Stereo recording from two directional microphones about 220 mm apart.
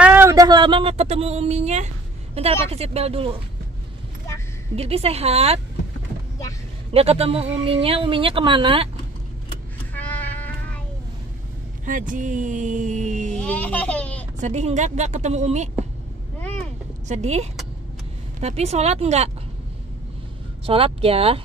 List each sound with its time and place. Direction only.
0.0 s a sound: 10° right (ahead or behind); by 1.9 s 30° right (ahead or behind)
2.3 s speech: 25° right (ahead or behind)
4.7 s speech: 25° right (ahead or behind)
6.9 s speech: 25° right (ahead or behind)
9.9 s cat: 10° left (ahead or behind)
11.8 s speech: 35° right (ahead or behind)
13.3 s laughter: 5° left (ahead or behind)
14.4 s speech: 30° right (ahead or behind)
17.1 s speech: 30° right (ahead or behind)
20.6 s speech: 25° right (ahead or behind)